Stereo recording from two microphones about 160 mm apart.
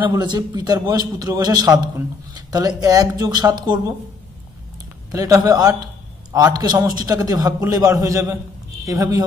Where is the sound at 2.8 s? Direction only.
25° right (ahead or behind).